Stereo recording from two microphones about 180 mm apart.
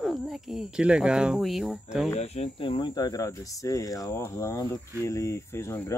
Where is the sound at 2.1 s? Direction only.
35° left (ahead or behind).